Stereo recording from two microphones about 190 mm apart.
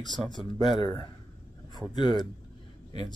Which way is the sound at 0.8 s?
25° left (ahead or behind).